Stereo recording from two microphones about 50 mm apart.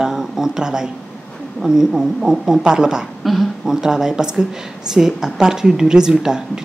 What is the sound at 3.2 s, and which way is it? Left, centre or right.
Speech, centre.